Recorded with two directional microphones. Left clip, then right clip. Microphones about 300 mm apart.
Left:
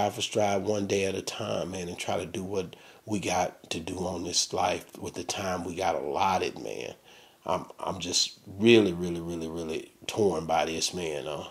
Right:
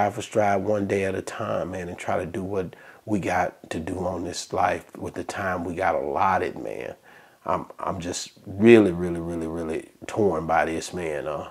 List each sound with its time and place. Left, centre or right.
0.3 s speech: right